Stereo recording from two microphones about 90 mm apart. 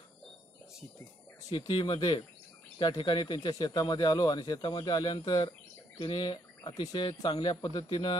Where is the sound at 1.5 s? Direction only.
65° left (ahead or behind).